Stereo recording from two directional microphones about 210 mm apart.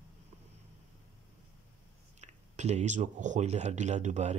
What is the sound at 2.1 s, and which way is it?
Speech, 35° right (ahead or behind).